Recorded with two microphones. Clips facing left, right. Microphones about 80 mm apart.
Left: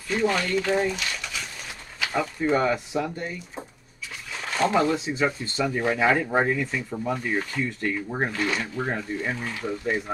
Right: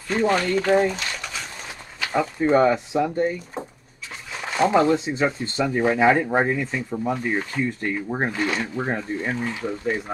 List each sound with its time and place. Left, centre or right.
0.1 s speech: right
2.1 s speech: right
4.4 s a sound: centre
4.8 s speech: right